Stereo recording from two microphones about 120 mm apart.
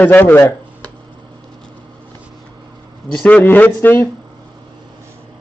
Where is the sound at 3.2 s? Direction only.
10° left (ahead or behind).